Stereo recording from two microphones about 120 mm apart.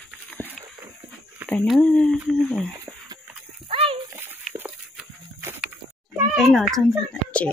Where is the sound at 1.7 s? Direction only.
5° left (ahead or behind).